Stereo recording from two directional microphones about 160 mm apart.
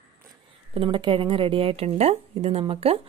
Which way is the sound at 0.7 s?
35° right (ahead or behind).